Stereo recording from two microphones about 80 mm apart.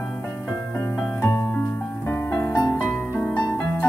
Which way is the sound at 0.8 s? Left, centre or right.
Left.